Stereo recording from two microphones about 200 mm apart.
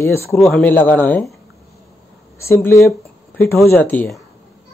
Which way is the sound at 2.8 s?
10° left (ahead or behind).